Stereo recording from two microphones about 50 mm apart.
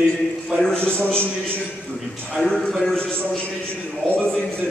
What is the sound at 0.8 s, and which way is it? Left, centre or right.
Speech, left.